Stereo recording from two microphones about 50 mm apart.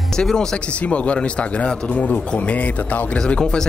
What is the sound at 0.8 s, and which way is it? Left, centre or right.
Speech, left.